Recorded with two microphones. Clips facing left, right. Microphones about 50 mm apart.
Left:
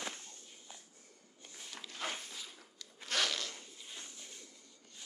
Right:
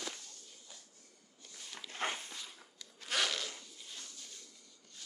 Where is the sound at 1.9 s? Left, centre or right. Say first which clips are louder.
Right 3 dB; right.